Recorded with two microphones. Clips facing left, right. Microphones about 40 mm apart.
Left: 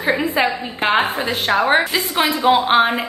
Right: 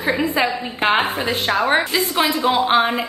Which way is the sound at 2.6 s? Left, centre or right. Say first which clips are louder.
Left 2 dB; centre.